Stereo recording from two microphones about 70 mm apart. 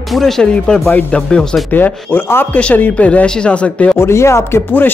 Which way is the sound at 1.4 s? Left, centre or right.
Centre.